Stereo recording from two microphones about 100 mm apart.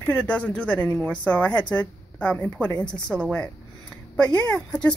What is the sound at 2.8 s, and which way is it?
Speech, 5° left (ahead or behind).